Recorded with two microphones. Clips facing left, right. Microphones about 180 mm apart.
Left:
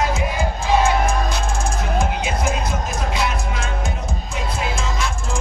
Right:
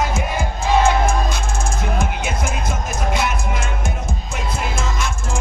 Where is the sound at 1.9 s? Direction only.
45° right (ahead or behind).